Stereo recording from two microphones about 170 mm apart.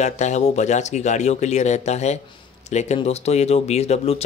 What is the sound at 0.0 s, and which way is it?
Speech, 45° left (ahead or behind).